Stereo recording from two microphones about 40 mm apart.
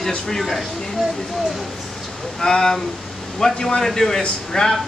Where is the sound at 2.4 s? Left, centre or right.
Centre.